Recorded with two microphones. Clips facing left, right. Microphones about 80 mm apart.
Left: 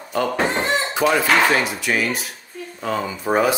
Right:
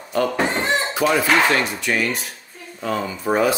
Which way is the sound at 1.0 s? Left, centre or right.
Left.